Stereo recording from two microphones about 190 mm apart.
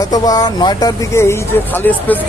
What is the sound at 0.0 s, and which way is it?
Speech, 20° left (ahead or behind).